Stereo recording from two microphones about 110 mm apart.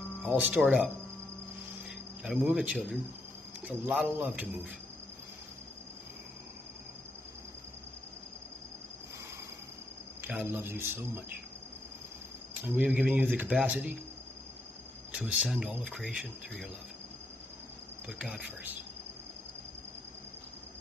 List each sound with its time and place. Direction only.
0.4 s speech: 10° right (ahead or behind)
10.2 s a man's voice: 15° right (ahead or behind)
12.6 s speech: 10° right (ahead or behind)
15.1 s speech: 10° right (ahead or behind)
18.0 s speech: 5° right (ahead or behind)